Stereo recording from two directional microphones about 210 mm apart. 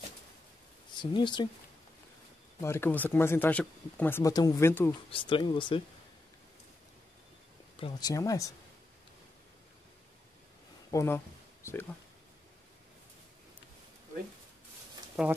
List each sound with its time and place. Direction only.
0.9 s speech: 20° left (ahead or behind)
2.6 s speech: 10° left (ahead or behind)
5.1 s speech: 25° left (ahead or behind)
7.8 s speech: 15° left (ahead or behind)
10.9 s speech: 15° left (ahead or behind)